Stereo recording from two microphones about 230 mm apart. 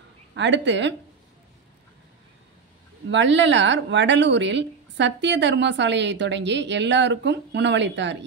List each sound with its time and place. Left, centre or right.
0.4 s speech: right
3.1 s speech: right